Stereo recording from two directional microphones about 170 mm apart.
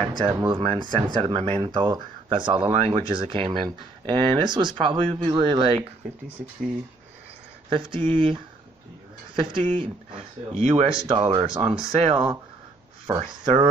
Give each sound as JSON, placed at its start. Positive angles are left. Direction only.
{"t": 0.0, "sound": "speech", "side_deg": -30}
{"t": 7.7, "sound": "speech", "side_deg": -30}
{"t": 11.1, "sound": "speech", "side_deg": -30}